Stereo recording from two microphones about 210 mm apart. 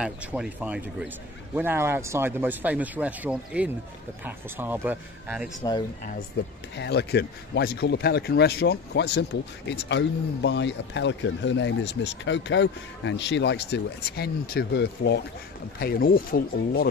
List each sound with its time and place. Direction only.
0.0 s a man's voice: 5° right (ahead or behind)
5.6 s speech: 20° left (ahead or behind)
6.4 s speech: 50° left (ahead or behind)